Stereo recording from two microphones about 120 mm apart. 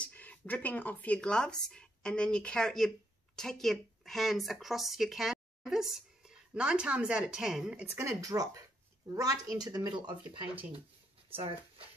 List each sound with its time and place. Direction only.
0.0 s speech: 10° left (ahead or behind); by 7.8 s 5° right (ahead or behind)
7.9 s a woman's voice: 25° right (ahead or behind); by 11.5 s 50° right (ahead or behind)